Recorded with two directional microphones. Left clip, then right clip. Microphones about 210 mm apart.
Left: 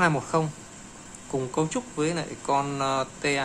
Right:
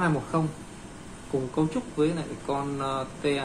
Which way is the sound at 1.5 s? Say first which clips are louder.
Left 1 dB; 25° left (ahead or behind).